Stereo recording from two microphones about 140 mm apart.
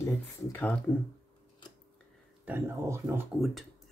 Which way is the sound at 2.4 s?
15° right (ahead or behind).